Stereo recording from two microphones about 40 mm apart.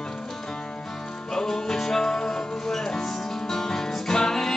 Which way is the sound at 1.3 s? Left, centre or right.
Centre.